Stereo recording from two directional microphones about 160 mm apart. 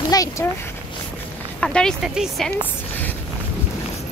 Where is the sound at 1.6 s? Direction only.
5° left (ahead or behind).